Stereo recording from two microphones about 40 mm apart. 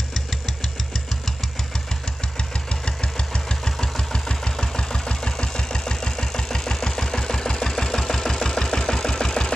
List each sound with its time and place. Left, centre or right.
2.3 s engine: left